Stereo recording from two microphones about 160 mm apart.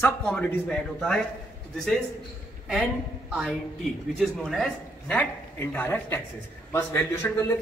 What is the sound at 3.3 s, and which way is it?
Speech, 5° right (ahead or behind).